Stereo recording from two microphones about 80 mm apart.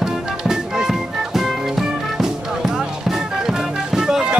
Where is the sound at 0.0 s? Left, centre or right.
Centre.